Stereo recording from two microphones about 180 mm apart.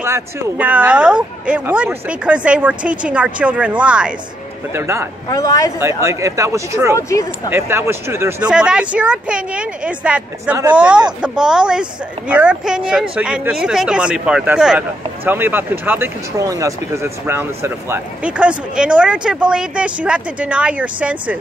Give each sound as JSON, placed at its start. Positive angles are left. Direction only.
{"t": 0.0, "sound": "speech", "side_deg": -15}
{"t": 5.3, "sound": "a man's voice", "side_deg": 20}
{"t": 5.8, "sound": "speech", "side_deg": -15}
{"t": 7.0, "sound": "a man's voice", "side_deg": 15}
{"t": 7.5, "sound": "speech", "side_deg": -15}